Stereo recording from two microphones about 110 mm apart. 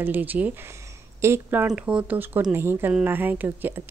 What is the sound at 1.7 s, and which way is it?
Speech, 10° right (ahead or behind).